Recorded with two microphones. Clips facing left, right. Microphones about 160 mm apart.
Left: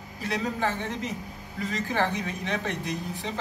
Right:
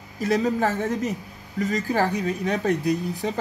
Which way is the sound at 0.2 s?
45° right (ahead or behind).